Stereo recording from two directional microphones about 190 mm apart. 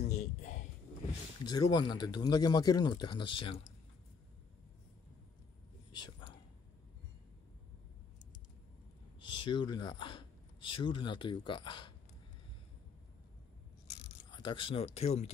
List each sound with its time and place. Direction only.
0.0 s a sound: 35° left (ahead or behind)
1.4 s speech: 20° left (ahead or behind)
5.9 s whispering: 25° left (ahead or behind)
9.2 s speech: 25° left (ahead or behind)
14.3 s speech: 25° left (ahead or behind)